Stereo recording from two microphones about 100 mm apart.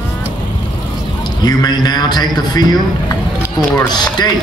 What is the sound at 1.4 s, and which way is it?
A man's voice, 40° left (ahead or behind).